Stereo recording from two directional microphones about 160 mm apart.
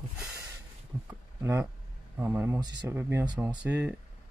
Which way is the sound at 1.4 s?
15° right (ahead or behind).